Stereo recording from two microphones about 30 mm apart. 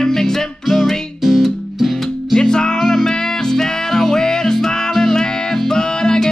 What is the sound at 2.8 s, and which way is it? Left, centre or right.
Music, centre.